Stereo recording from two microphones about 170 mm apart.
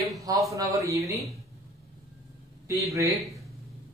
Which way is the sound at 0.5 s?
20° right (ahead or behind).